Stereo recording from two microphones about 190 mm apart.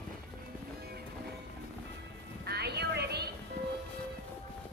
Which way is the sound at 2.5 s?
60° right (ahead or behind).